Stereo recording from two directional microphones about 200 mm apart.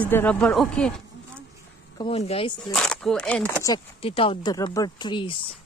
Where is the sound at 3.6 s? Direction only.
25° left (ahead or behind).